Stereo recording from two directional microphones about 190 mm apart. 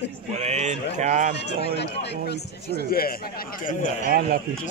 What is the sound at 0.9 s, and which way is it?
Speech, 40° right (ahead or behind).